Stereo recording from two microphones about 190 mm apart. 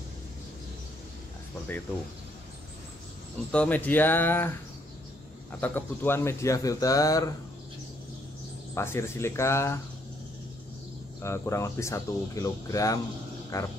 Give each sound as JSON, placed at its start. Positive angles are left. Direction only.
{"t": 3.5, "sound": "speech", "side_deg": 10}
{"t": 8.7, "sound": "speech", "side_deg": 15}
{"t": 11.2, "sound": "speech", "side_deg": 15}